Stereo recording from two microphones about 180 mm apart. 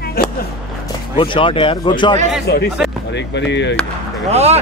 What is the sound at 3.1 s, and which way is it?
Speech, 75° left (ahead or behind).